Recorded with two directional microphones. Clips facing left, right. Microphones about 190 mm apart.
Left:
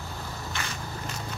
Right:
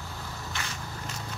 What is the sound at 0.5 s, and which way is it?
Vehicle, 55° left (ahead or behind).